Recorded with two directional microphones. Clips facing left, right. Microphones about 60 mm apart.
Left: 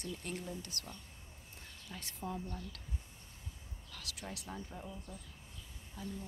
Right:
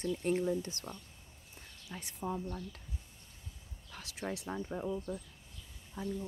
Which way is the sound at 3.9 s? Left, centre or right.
Right.